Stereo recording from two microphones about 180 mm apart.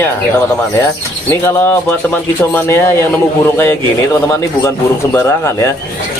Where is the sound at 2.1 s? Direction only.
10° left (ahead or behind).